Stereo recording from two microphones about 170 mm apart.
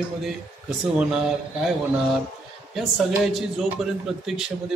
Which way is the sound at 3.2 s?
Centre (ahead or behind).